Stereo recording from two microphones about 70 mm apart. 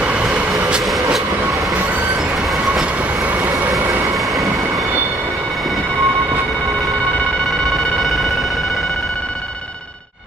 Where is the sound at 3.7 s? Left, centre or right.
Right.